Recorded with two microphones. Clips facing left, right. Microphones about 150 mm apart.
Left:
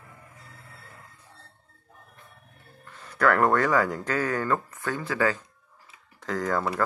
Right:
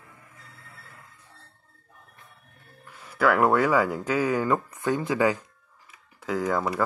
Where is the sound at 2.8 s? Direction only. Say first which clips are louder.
Even; 10° right (ahead or behind).